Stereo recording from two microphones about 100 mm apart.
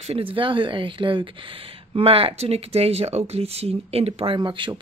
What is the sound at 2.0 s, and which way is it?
Speech, 70° right (ahead or behind).